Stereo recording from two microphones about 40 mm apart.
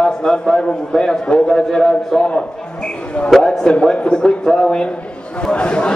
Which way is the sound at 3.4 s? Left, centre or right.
Centre.